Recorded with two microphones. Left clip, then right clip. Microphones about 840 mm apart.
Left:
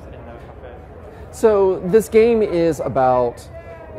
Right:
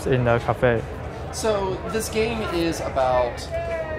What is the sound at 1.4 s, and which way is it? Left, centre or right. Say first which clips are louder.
Speech: left 9 dB; left.